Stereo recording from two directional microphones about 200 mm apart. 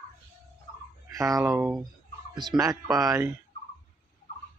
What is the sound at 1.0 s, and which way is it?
Speech, 15° right (ahead or behind).